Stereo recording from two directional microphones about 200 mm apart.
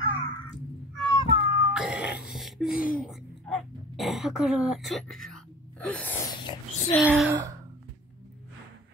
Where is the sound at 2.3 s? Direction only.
Centre (ahead or behind).